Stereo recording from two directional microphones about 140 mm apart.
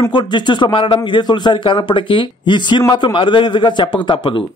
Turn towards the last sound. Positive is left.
turn(degrees=35)  # may be behind; listen again after turning